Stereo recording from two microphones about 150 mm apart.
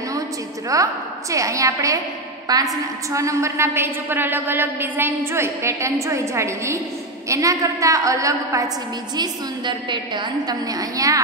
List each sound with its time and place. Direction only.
0.7 s a woman's voice: 20° right (ahead or behind)